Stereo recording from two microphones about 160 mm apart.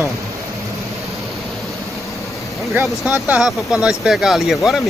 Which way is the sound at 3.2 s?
5° right (ahead or behind).